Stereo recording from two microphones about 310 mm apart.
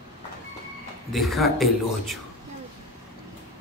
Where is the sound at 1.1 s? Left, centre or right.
Centre.